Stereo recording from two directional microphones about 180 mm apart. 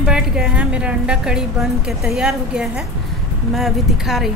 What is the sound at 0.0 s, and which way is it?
A woman's voice, 5° right (ahead or behind).